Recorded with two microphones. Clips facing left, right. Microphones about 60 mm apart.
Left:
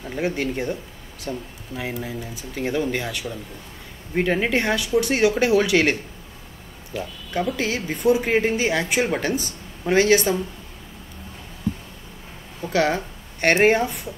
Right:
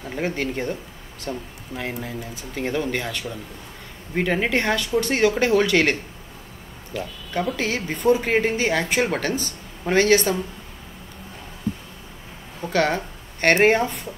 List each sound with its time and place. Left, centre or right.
0.2 s speech: centre
1.3 s speech: right
1.8 s speech: centre
3.3 s speech: centre
12.7 s speech: centre